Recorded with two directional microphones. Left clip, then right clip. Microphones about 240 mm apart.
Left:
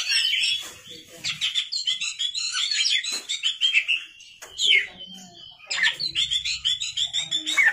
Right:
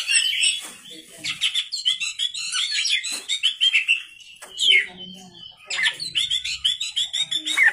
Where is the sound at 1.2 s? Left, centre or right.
Right.